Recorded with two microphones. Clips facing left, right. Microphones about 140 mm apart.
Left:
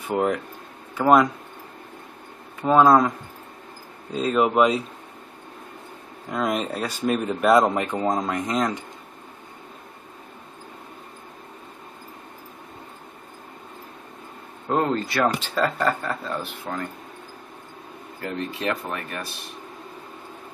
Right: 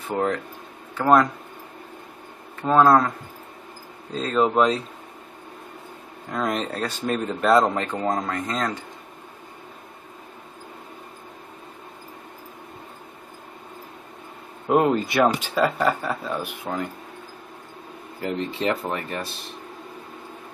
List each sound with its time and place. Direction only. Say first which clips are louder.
0.1 s speech: left 1 dB; 10° left (ahead or behind)
2.6 s speech: left 1 dB; 10° left (ahead or behind)
4.1 s speech: left 1 dB; 10° left (ahead or behind)
6.3 s speech: left 1 dB; 5° left (ahead or behind)
14.7 s speech: right 4 dB; 10° right (ahead or behind)
18.5 s speech: right 3 dB; 25° right (ahead or behind)